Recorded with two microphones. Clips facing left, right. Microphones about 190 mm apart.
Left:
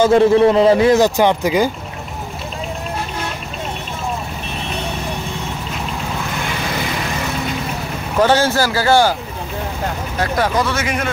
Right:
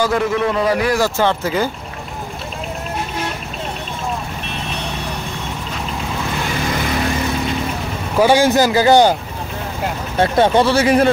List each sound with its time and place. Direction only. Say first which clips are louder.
0.0 s a man's voice: left 7 dB; 30° left (ahead or behind)
8.2 s speech: right 2 dB; 10° right (ahead or behind)
10.1 s speech: right 5 dB; 25° right (ahead or behind)